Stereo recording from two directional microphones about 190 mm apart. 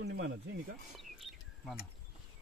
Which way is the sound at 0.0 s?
60° right (ahead or behind).